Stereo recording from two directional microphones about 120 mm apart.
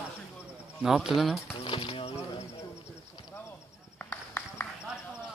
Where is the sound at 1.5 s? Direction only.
45° left (ahead or behind).